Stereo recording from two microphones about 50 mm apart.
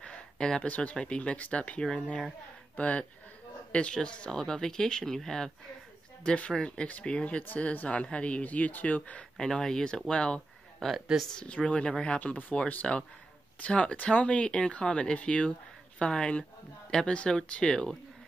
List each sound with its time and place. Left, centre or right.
0.0 s a sound: centre
0.7 s speech: left
6.2 s speech: left
7.4 s speech: left
9.5 s speech: centre
12.2 s speech: left; by 17.9 s centre